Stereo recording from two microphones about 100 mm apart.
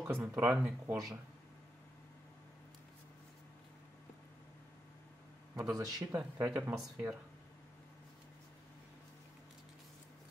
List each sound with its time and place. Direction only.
0.0 s speech: 20° right (ahead or behind)
5.6 s speech: 35° right (ahead or behind)
6.4 s speech: 30° right (ahead or behind)